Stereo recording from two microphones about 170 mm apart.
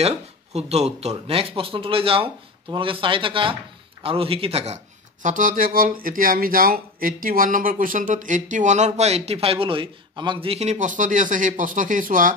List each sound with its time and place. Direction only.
0.0 s speech: 40° right (ahead or behind)
5.2 s speech: 50° right (ahead or behind)